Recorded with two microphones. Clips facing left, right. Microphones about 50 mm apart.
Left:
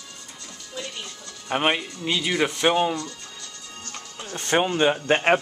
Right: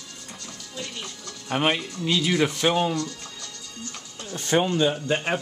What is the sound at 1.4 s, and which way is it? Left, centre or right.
Speech, centre.